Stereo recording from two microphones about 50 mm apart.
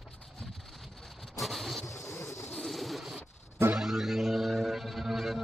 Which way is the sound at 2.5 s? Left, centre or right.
Centre.